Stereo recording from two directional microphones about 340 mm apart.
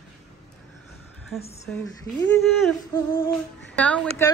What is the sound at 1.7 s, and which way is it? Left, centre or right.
A woman's voice, centre.